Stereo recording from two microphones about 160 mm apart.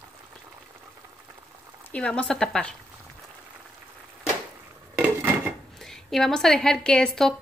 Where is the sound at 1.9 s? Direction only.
10° left (ahead or behind).